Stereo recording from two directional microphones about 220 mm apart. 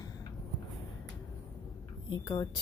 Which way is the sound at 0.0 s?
15° left (ahead or behind).